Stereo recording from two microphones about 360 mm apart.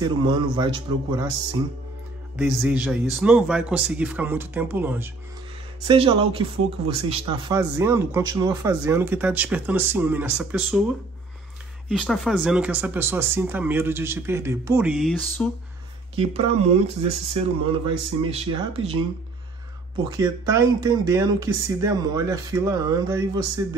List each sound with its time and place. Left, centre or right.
0.0 s speech: centre
2.3 s speech: centre
11.9 s speech: centre
16.2 s speech: centre
20.1 s speech: centre